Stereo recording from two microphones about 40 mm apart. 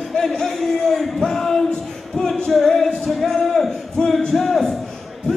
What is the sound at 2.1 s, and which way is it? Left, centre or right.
Music, centre.